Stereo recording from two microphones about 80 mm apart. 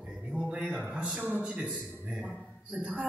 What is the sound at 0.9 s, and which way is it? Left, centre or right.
Speech, centre.